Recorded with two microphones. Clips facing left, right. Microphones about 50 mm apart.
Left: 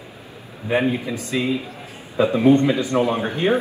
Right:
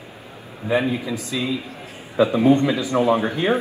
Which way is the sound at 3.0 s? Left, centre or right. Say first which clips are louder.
Right 3 dB; right.